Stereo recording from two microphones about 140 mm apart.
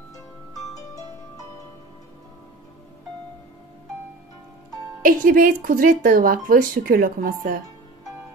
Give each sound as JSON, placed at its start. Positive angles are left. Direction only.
{"t": 0.7, "sound": "music", "side_deg": 25}
{"t": 5.0, "sound": "speech", "side_deg": -90}